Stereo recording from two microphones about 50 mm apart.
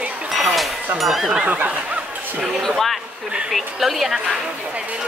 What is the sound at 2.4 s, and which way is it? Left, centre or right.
Speech, centre.